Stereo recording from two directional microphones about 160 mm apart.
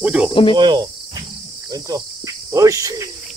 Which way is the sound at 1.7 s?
20° right (ahead or behind).